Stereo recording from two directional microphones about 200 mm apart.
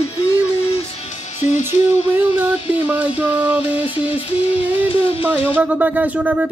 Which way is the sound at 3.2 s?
10° right (ahead or behind).